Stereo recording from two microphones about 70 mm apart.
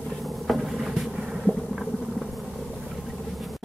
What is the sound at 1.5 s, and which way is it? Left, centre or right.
Vehicle, centre.